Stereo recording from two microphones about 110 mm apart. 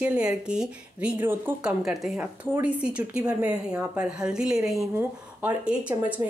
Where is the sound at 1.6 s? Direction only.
5° right (ahead or behind).